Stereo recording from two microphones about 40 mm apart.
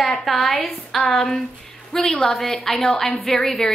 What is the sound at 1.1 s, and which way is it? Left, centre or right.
A woman's voice, centre.